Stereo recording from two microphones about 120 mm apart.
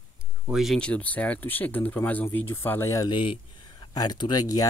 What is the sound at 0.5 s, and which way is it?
Speech, 5° right (ahead or behind).